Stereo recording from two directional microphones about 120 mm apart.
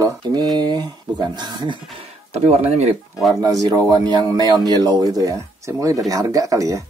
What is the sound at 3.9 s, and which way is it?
Speech, 35° right (ahead or behind).